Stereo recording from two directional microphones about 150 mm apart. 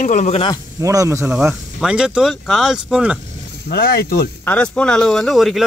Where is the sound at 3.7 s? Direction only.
90° left.